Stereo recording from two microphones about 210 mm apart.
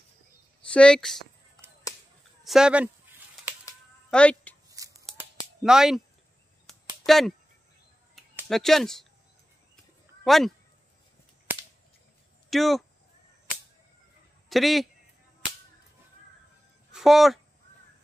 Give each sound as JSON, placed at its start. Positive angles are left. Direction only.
{"t": 0.7, "sound": "speech", "side_deg": 5}
{"t": 2.4, "sound": "a sound", "side_deg": -5}
{"t": 4.1, "sound": "music", "side_deg": 5}
{"t": 4.8, "sound": "scissors", "side_deg": -15}
{"t": 5.6, "sound": "speech", "side_deg": 0}
{"t": 7.1, "sound": "speech", "side_deg": 0}
{"t": 8.5, "sound": "speech", "side_deg": 0}
{"t": 10.2, "sound": "speech", "side_deg": 0}
{"t": 12.4, "sound": "speech", "side_deg": 0}
{"t": 14.5, "sound": "speech", "side_deg": 0}
{"t": 16.9, "sound": "speech", "side_deg": 0}